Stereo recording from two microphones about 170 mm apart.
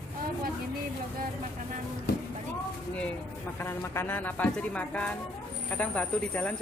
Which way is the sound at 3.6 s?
15° left (ahead or behind).